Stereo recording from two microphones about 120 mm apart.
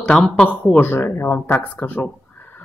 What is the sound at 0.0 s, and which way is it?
Speech, 5° left (ahead or behind).